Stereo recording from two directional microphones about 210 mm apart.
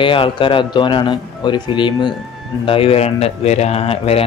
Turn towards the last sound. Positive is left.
turn(degrees=30)  # may be behind; listen again after turning